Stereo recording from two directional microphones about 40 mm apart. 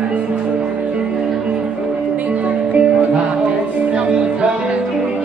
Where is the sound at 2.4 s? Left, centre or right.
Right.